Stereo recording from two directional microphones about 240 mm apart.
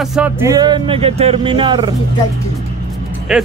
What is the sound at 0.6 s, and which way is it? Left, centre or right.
Speech, centre.